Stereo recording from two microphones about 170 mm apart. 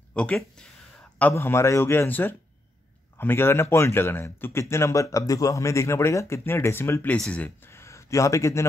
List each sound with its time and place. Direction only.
0.1 s speech: 5° left (ahead or behind)